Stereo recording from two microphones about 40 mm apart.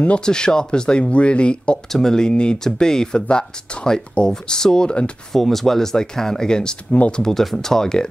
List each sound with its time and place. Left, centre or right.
0.2 s speech: centre
1.9 s speech: centre
5.3 s speech: centre
7.3 s speech: centre